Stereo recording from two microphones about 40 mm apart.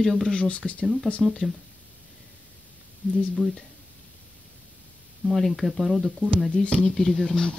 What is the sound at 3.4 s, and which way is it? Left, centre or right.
Speech, centre.